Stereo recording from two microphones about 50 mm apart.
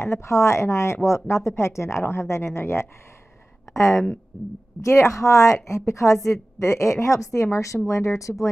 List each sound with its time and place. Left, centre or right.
0.0 s speech: left
4.8 s a woman's voice: left